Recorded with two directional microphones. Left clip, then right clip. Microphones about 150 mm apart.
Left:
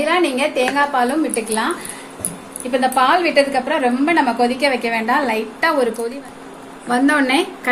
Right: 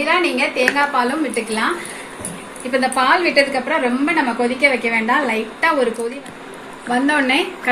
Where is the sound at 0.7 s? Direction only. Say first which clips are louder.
Left 1 dB; 15° left (ahead or behind).